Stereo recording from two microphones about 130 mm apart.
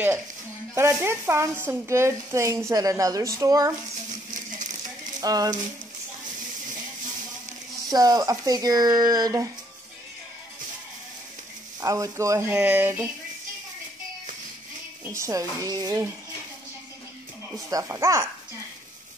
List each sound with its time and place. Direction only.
0.9 s a woman's voice: 20° right (ahead or behind)
4.1 s a sound: 75° right (ahead or behind)
5.2 s a woman's voice: 30° right (ahead or behind)
7.9 s a woman's voice: 30° right (ahead or behind)
11.8 s a woman's voice: 25° right (ahead or behind)
15.0 s a woman's voice: 25° right (ahead or behind)
17.6 s a woman's voice: 25° right (ahead or behind)